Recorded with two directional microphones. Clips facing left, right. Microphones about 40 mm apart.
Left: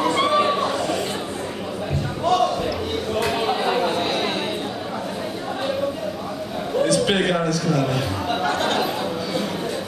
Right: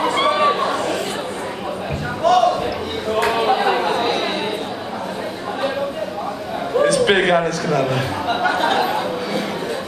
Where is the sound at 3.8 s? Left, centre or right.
Right.